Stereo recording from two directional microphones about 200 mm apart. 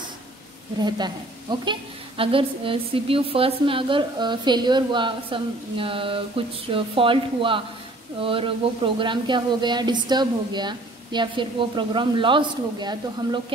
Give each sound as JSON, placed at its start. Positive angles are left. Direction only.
{"t": 0.7, "sound": "a woman's voice", "side_deg": -20}